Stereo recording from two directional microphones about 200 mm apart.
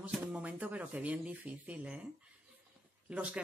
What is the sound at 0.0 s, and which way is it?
Speech, 5° right (ahead or behind).